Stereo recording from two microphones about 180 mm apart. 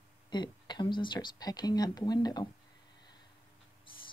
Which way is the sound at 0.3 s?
25° left (ahead or behind).